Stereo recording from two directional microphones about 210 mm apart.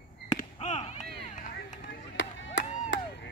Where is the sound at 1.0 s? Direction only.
35° left (ahead or behind).